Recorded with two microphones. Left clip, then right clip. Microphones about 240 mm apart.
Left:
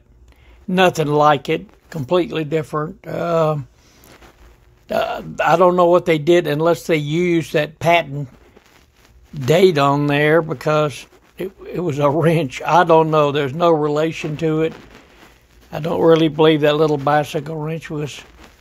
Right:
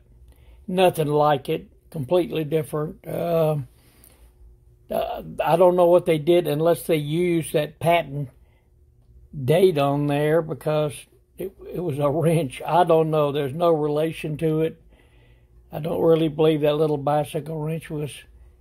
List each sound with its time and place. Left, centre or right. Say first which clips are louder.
0.7 s speech: left 4 dB; centre
4.8 s speech: left 6 dB; centre
9.4 s speech: left 5 dB; centre
15.7 s speech: left 6 dB; centre